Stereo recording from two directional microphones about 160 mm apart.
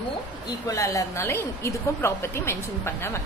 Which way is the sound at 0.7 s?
20° left (ahead or behind).